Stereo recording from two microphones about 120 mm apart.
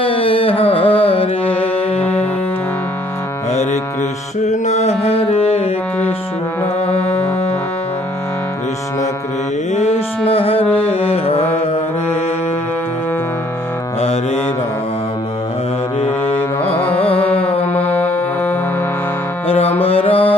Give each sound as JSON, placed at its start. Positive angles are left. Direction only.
{"t": 0.0, "sound": "music", "side_deg": 50}
{"t": 2.0, "sound": "music", "side_deg": 15}
{"t": 4.5, "sound": "mantra", "side_deg": 65}
{"t": 6.9, "sound": "music", "side_deg": 10}
{"t": 9.8, "sound": "music", "side_deg": 55}
{"t": 16.1, "sound": "music", "side_deg": 20}
{"t": 16.7, "sound": "carnatic music", "side_deg": 15}
{"t": 17.4, "sound": "music", "side_deg": 55}
{"t": 17.7, "sound": "music", "side_deg": 15}
{"t": 19.4, "sound": "music", "side_deg": 55}